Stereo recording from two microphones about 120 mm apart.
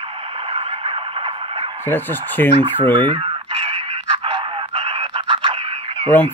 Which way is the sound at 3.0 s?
45° right (ahead or behind).